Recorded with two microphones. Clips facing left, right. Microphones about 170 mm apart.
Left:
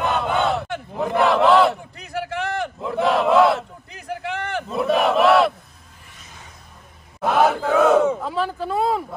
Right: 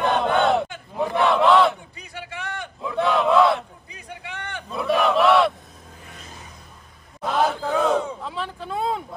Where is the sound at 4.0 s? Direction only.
85° left.